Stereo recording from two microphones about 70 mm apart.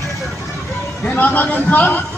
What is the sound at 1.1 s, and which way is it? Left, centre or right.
Speech, left.